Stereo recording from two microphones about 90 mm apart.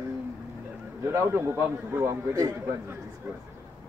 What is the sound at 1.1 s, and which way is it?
A man's voice, 25° right (ahead or behind).